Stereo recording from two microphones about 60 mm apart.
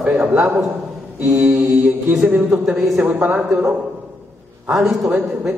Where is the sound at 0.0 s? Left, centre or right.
Right.